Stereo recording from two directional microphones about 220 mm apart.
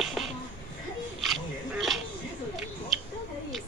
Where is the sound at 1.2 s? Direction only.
Centre (ahead or behind).